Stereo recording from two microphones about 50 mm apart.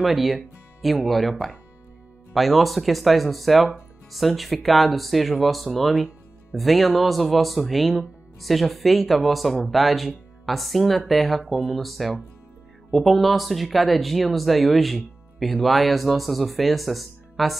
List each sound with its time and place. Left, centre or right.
0.0 s speech: centre
2.3 s speech: centre